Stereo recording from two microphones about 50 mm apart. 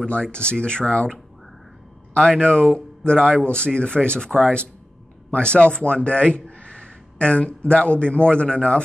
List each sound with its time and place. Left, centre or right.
0.0 s speech: left
2.1 s a man's voice: centre